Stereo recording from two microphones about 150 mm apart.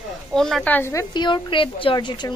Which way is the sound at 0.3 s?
Centre (ahead or behind).